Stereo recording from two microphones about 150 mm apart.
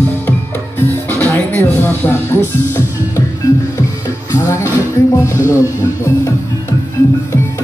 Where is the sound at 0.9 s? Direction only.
15° left (ahead or behind).